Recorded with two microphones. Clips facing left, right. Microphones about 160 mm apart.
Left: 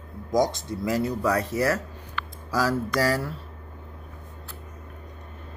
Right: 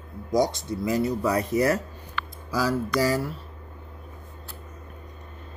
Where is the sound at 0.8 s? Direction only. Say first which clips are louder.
Even; 15° right (ahead or behind).